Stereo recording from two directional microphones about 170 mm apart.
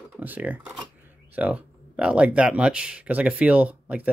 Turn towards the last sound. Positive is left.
turn(degrees=-10)  # may be behind; listen again after turning